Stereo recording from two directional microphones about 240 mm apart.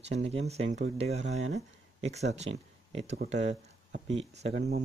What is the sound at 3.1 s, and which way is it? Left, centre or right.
Speech, right.